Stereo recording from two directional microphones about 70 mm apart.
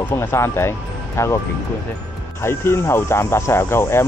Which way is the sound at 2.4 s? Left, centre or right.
Left.